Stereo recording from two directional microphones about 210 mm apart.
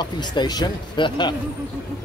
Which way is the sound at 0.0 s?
20° left (ahead or behind).